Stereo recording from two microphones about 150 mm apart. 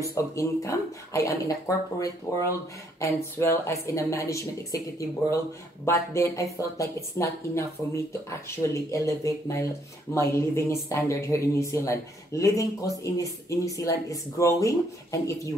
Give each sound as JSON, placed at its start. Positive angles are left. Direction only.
{"t": 0.1, "sound": "speech", "side_deg": 20}